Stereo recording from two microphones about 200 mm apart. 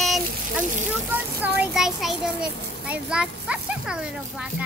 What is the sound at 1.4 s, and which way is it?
A child's voice, 10° right (ahead or behind).